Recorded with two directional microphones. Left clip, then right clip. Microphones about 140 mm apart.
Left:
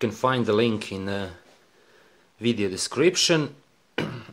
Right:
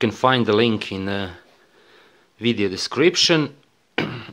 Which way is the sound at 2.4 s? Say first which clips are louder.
Right 4 dB; 10° right (ahead or behind).